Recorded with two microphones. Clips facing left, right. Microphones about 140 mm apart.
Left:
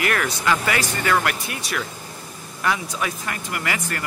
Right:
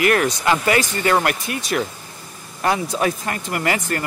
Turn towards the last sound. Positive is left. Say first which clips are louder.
# right 5 dB
turn(degrees=-35)  # may be behind; listen again after turning